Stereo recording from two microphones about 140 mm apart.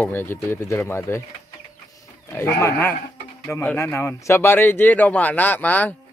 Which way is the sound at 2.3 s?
15° left (ahead or behind).